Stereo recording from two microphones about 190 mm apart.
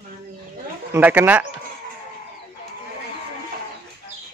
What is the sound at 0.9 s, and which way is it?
Speech, 10° right (ahead or behind).